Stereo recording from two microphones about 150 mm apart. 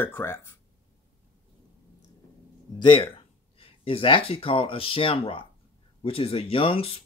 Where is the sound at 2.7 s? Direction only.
35° left (ahead or behind).